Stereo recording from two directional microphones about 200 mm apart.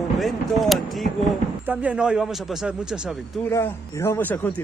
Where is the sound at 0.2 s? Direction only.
Centre (ahead or behind).